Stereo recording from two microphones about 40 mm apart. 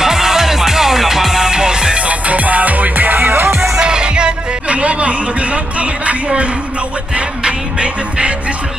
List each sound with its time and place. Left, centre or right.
0.0 s music: centre
2.0 s music: right
3.7 s music: right
6.2 s speech: right
7.2 s music: right